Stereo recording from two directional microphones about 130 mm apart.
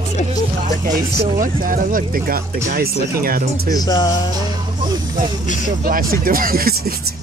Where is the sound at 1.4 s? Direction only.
90° right.